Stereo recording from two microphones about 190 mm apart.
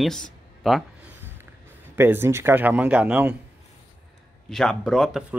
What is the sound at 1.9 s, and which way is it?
Speech, 10° right (ahead or behind).